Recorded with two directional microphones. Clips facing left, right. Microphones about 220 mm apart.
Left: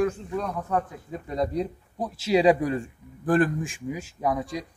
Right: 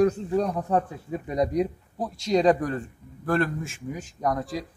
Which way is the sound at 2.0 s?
Centre (ahead or behind).